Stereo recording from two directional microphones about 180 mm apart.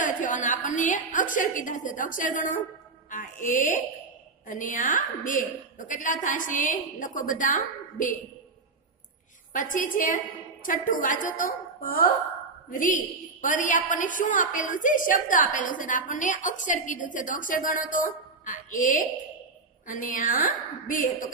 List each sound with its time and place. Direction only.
0.0 s a sound: 45° left (ahead or behind)
3.1 s music: 45° left (ahead or behind)
4.5 s a woman's voice: 45° left (ahead or behind)
9.5 s a woman's voice: 50° left (ahead or behind)